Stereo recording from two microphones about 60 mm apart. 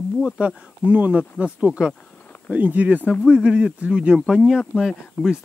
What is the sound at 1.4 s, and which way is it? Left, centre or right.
Speech, centre.